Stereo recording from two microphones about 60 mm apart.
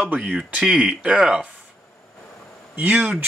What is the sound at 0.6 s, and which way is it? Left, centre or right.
Speech, centre.